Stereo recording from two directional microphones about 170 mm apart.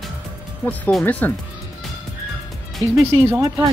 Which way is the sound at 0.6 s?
5° left (ahead or behind).